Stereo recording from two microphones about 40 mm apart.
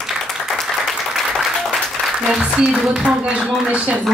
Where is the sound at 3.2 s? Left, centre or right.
Right.